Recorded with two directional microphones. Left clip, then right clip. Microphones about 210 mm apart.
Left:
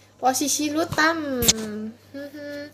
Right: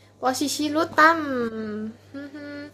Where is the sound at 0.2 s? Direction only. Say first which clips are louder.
Left 2 dB; centre (ahead or behind).